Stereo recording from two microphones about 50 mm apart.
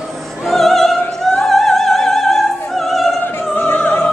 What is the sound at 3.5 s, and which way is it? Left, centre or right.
Opera, left.